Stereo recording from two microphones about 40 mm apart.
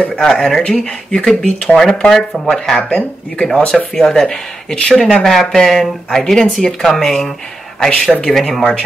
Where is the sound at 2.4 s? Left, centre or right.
Centre.